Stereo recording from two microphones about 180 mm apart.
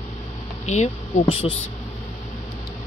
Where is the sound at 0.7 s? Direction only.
35° left (ahead or behind).